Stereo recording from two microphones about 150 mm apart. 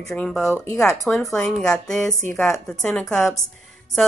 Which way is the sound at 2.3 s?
15° left (ahead or behind).